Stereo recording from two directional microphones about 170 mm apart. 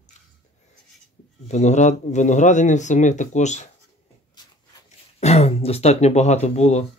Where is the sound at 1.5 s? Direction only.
45° left (ahead or behind).